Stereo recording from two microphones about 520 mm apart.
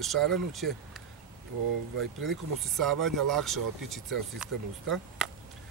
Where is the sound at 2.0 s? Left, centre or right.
Right.